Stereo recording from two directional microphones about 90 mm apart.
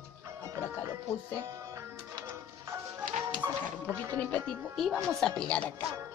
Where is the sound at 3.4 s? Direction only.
40° right (ahead or behind).